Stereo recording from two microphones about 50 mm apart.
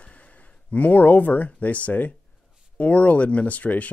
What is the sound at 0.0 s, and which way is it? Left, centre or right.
Speech, left.